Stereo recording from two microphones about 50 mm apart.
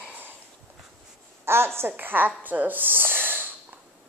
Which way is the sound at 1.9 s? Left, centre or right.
Right.